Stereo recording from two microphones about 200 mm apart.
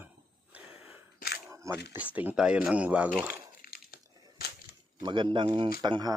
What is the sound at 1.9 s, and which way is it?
Speech, 10° right (ahead or behind).